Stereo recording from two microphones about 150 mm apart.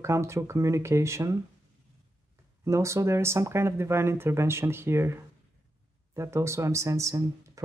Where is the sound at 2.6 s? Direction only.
20° right (ahead or behind).